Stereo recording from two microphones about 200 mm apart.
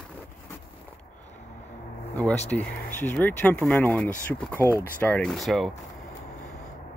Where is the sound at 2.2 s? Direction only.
5° left (ahead or behind).